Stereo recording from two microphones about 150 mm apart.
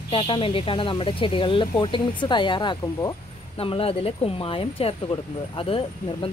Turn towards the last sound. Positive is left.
turn(degrees=35)  # may be behind; listen again after turning